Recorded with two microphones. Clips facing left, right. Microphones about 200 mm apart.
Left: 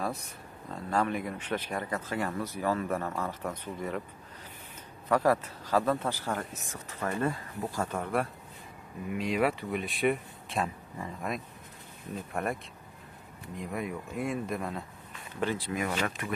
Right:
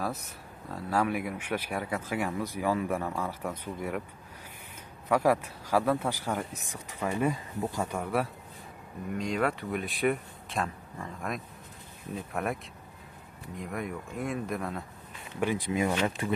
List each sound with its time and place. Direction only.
0.7 s speech: 5° right (ahead or behind)
5.0 s speech: 10° right (ahead or behind)
9.1 s speech: 5° left (ahead or behind)
13.6 s speech: centre (ahead or behind)
15.4 s speech: 15° right (ahead or behind)
16.2 s speech: 30° right (ahead or behind)